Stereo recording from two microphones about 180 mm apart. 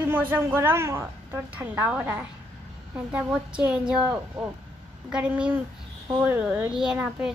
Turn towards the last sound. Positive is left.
turn(degrees=-5)  # may be behind; listen again after turning